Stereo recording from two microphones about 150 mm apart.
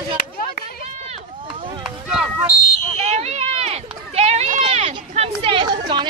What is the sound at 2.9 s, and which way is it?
Run, 50° right (ahead or behind).